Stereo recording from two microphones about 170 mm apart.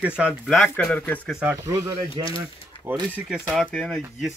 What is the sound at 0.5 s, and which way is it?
Speech, 5° left (ahead or behind).